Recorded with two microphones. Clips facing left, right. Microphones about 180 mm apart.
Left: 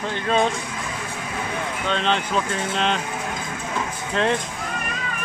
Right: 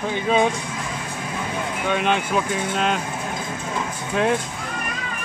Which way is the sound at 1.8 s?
10° right (ahead or behind).